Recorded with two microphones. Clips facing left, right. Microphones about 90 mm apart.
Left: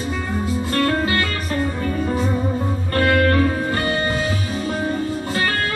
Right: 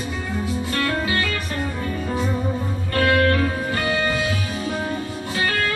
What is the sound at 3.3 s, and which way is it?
Music, 35° left (ahead or behind).